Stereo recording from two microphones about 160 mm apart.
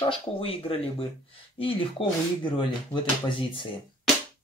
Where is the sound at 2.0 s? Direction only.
35° left (ahead or behind).